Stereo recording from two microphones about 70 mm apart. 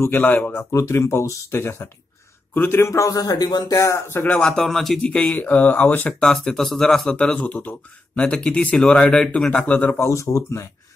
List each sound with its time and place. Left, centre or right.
0.1 s speech: left
0.7 s speech: left
2.7 s speech: left
3.7 s speech: left
4.3 s speech: centre
5.0 s speech: centre
6.1 s speech: centre
9.9 s speech: left